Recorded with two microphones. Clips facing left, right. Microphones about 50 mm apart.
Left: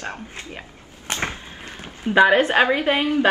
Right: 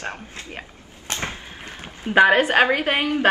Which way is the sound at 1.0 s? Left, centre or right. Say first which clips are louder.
Left 2 dB; left.